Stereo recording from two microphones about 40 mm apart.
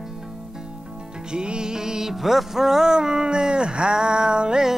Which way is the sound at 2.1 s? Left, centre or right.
Centre.